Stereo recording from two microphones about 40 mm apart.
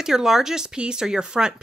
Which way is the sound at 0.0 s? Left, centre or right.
Centre.